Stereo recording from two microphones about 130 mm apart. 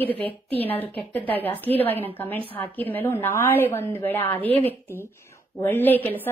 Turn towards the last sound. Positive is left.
turn(degrees=15)  # may be behind; listen again after turning